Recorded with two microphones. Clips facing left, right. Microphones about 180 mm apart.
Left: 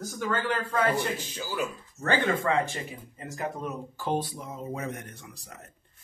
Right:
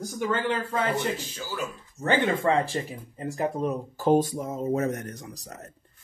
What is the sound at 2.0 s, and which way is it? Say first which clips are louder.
Speech: right 3 dB; 20° right (ahead or behind).